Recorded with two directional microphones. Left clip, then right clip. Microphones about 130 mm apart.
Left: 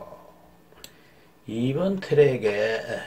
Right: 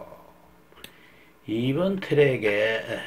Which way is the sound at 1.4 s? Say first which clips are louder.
Right 1 dB; 20° right (ahead or behind).